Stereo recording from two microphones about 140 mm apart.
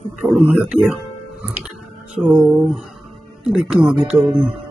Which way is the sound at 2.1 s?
5° right (ahead or behind).